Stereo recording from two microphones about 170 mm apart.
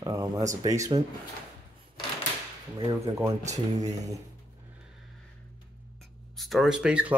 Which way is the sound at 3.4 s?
40° right (ahead or behind).